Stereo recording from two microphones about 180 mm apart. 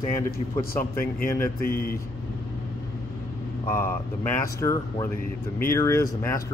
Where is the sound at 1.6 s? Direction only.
55° left (ahead or behind).